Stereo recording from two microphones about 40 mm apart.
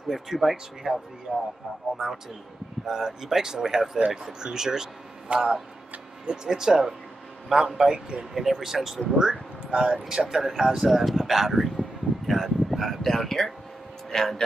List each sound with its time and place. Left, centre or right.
0.1 s speech: centre
2.0 s speech: centre
5.3 s speech: right
6.2 s a man's voice: centre
8.4 s speech: centre
9.7 s speech: centre
12.3 s a sound: centre
14.1 s speech: centre